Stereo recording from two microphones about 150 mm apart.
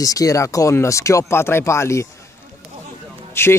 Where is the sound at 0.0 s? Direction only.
25° left (ahead or behind).